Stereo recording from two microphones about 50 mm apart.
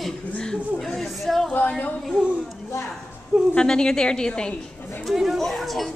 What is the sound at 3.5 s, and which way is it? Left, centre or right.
A woman's voice, centre.